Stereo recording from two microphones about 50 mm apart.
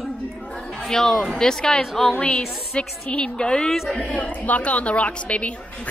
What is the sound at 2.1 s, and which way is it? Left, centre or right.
A woman's voice, left.